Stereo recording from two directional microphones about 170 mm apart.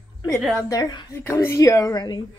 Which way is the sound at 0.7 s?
25° left (ahead or behind).